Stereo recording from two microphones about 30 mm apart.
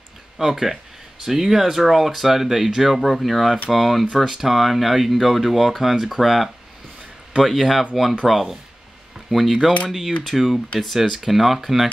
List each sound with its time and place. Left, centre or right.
0.4 s speech: centre